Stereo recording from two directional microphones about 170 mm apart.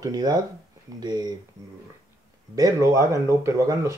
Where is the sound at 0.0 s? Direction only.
20° right (ahead or behind).